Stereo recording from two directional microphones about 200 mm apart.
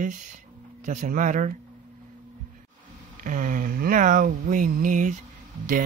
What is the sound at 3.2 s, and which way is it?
Speech, 40° right (ahead or behind).